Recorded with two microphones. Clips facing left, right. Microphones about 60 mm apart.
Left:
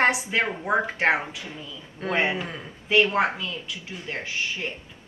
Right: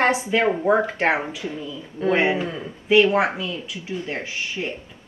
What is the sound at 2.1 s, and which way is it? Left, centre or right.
Speech, right.